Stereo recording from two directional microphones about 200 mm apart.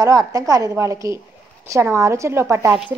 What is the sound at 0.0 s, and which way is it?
A woman's voice, 15° right (ahead or behind).